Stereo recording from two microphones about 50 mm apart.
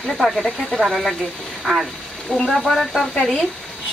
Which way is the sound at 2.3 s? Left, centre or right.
Centre.